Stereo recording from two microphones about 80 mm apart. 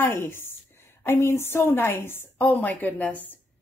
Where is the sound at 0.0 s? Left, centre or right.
Left.